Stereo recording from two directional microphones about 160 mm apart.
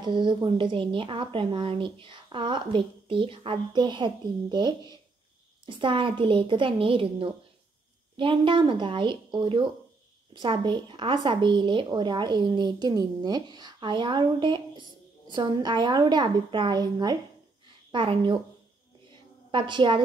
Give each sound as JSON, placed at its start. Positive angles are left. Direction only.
{"t": 0.0, "sound": "speech", "side_deg": -30}
{"t": 19.5, "sound": "speech", "side_deg": -30}